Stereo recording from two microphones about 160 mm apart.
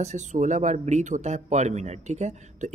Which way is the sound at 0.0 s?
50° right (ahead or behind).